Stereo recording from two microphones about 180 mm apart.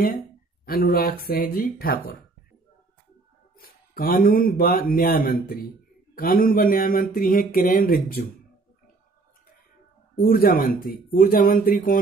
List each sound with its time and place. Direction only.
0.7 s speech: 55° left (ahead or behind)
3.5 s speech: 55° left (ahead or behind)
10.2 s speech: 55° left (ahead or behind)